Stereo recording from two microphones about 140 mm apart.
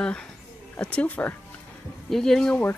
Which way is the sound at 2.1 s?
5° left (ahead or behind).